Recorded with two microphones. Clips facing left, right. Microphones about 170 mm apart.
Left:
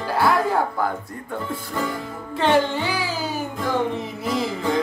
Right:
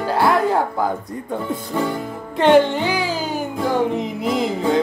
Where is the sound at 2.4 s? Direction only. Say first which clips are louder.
Right 6 dB; 15° right (ahead or behind).